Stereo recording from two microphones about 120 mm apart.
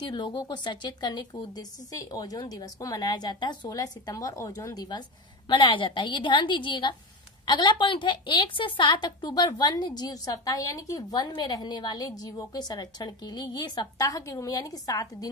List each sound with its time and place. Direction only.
0.0 s a woman's voice: 35° left (ahead or behind)